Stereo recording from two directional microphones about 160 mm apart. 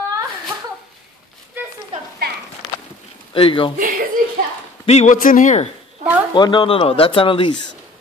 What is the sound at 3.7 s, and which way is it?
Chuckle, 60° right (ahead or behind).